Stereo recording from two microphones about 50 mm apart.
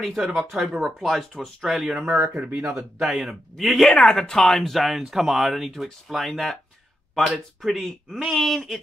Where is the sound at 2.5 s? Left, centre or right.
Right.